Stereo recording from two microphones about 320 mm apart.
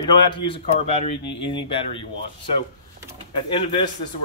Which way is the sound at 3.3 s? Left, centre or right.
Centre.